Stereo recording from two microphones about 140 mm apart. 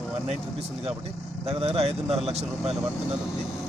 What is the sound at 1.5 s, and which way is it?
Speech, 45° right (ahead or behind).